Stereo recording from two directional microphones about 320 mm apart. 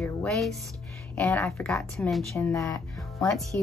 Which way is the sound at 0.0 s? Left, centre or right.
Centre.